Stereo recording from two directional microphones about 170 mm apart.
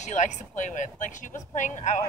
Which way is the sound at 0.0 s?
45° left (ahead or behind).